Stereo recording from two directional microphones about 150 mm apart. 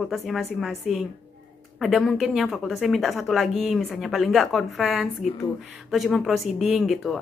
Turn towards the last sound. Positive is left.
turn(degrees=0)  # may be behind; listen again after turning